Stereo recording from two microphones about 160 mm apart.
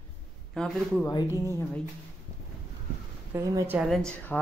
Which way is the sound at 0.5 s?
5° left (ahead or behind).